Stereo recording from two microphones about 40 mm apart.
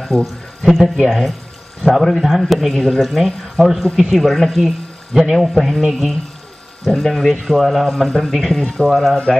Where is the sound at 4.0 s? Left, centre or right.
Centre.